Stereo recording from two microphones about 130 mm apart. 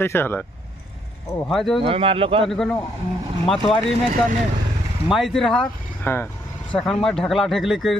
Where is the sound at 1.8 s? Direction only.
45° right (ahead or behind).